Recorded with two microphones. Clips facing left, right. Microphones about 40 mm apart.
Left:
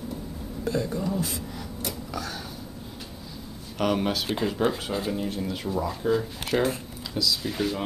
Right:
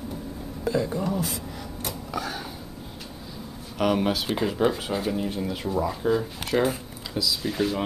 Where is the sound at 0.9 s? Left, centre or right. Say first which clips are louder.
Right 1 dB; right.